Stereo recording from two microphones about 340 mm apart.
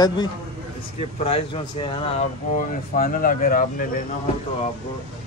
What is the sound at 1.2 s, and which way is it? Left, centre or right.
A man's voice, centre.